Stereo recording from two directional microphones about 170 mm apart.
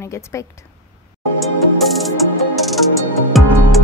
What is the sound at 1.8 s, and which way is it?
Music, centre (ahead or behind).